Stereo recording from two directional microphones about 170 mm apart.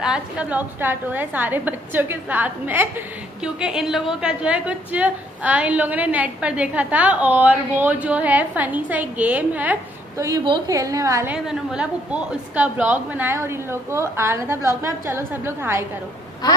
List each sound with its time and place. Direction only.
0.0 s a woman's voice: 5° right (ahead or behind)
10.4 s a woman's voice: 25° right (ahead or behind)
11.3 s a woman's voice: 5° right (ahead or behind)
16.4 s speech: 25° left (ahead or behind)